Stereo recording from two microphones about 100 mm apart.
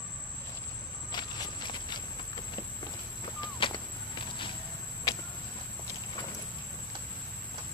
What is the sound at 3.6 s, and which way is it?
Walk, 60° left (ahead or behind).